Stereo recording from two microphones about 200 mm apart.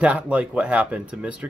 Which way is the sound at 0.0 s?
5° right (ahead or behind).